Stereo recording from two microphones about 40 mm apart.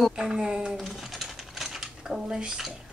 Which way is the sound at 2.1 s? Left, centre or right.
Centre.